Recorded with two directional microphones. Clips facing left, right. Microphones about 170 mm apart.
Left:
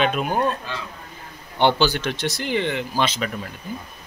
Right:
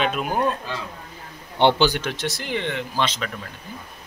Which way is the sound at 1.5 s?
25° right (ahead or behind).